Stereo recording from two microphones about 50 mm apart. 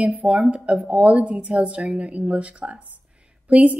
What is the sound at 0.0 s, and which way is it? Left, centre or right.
A woman's voice, right.